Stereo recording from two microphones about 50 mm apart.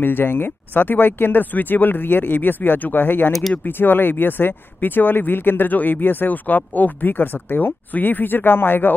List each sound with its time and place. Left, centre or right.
0.0 s speech: left